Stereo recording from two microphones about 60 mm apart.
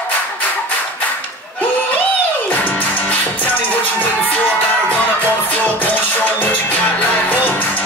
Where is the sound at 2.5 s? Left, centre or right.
Left.